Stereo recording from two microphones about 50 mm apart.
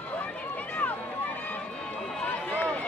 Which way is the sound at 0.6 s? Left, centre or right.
Left.